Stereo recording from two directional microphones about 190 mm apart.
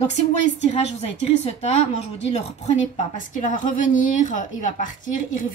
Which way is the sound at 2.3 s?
35° left (ahead or behind).